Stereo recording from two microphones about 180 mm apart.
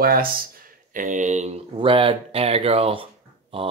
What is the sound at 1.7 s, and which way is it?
Speech, 30° right (ahead or behind).